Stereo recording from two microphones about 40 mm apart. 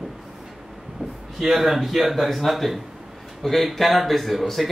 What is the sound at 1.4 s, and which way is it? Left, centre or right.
Speech, centre.